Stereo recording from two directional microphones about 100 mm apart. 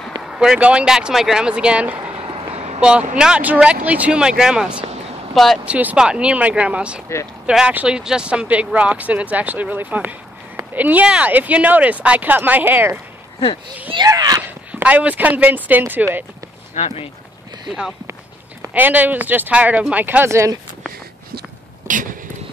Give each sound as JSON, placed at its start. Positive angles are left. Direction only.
{"t": 0.2, "sound": "speech", "side_deg": -5}
{"t": 2.0, "sound": "vehicle", "side_deg": -60}
{"t": 2.8, "sound": "speech", "side_deg": -10}
{"t": 5.7, "sound": "speech", "side_deg": -15}
{"t": 14.0, "sound": "a child's voice", "side_deg": -40}
{"t": 14.4, "sound": "speech", "side_deg": -15}
{"t": 16.7, "sound": "speech", "side_deg": 85}
{"t": 17.6, "sound": "speech", "side_deg": -5}
{"t": 18.7, "sound": "speech", "side_deg": -15}
{"t": 20.2, "sound": "speech", "side_deg": -30}
{"t": 21.8, "sound": "a sound", "side_deg": -25}